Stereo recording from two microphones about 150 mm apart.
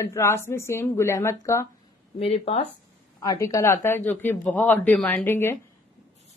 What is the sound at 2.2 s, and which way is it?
Speech, 40° left (ahead or behind).